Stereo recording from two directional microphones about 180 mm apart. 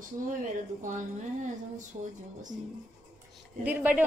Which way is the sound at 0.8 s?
45° right (ahead or behind).